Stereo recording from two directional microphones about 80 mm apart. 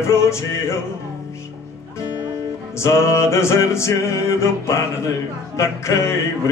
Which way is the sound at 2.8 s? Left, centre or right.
Left.